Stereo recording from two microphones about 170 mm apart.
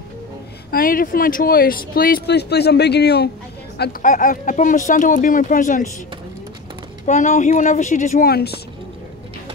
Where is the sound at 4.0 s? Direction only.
50° left (ahead or behind).